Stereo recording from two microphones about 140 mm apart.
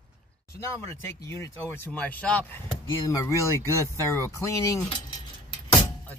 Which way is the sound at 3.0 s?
20° left (ahead or behind).